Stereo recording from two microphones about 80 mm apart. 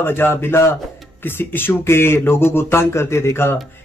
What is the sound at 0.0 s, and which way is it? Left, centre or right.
A man's voice, left.